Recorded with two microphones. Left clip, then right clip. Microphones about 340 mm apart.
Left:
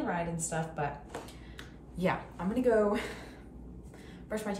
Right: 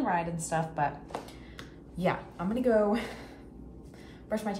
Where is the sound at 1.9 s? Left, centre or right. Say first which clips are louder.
Right 2 dB; centre.